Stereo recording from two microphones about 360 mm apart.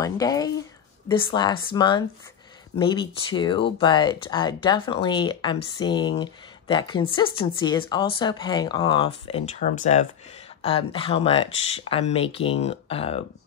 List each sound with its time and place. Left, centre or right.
0.0 s speech: centre